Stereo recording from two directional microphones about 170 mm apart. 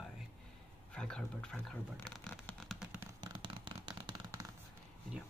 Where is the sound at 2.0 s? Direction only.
Centre (ahead or behind).